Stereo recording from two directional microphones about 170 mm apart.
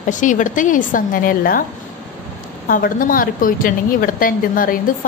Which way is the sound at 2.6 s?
55° left (ahead or behind).